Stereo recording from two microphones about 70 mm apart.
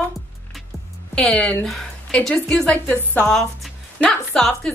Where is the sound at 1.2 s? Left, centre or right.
Centre.